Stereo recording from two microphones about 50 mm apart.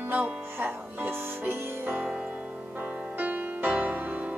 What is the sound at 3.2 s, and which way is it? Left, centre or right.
Music, right.